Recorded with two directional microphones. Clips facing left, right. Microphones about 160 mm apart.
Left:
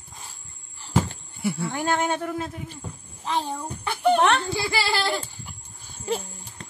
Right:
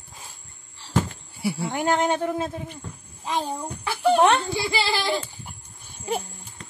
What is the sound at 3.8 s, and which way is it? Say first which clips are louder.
Speech: even; 5° right (ahead or behind).